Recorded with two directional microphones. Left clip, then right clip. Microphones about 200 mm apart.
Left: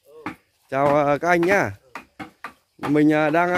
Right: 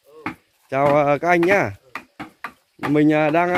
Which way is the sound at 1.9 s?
15° right (ahead or behind).